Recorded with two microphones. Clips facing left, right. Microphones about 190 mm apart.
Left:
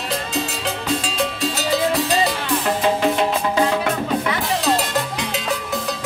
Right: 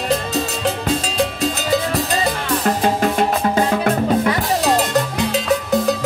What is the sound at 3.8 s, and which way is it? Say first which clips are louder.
Music: right 5 dB; 45° right (ahead or behind).